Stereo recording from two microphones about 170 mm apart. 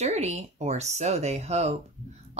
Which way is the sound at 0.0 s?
40° right (ahead or behind).